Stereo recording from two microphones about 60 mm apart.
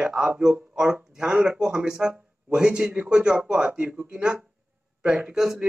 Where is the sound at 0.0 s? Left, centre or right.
Centre.